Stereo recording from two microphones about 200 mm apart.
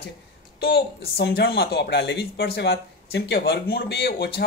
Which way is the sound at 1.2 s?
55° left (ahead or behind).